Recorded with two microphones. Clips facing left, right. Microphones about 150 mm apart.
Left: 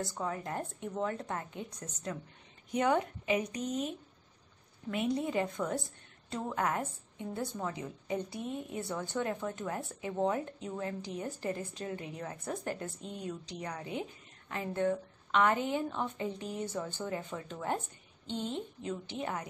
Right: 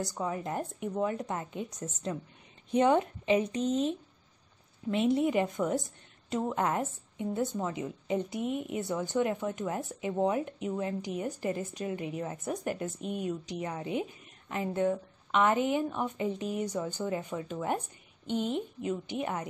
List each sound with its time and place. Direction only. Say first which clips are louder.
0.2 s a woman's voice: right 4 dB; 20° right (ahead or behind)
4.9 s a woman's voice: right 5 dB; 25° right (ahead or behind)